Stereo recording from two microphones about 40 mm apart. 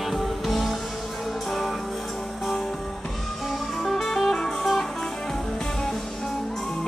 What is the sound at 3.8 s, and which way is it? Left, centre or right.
Music, centre.